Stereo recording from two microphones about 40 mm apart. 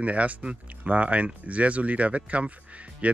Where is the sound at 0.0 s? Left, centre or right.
Right.